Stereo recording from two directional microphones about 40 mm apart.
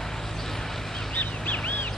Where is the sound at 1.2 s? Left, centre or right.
Left.